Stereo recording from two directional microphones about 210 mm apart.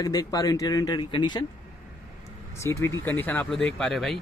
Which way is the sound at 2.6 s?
15° left (ahead or behind).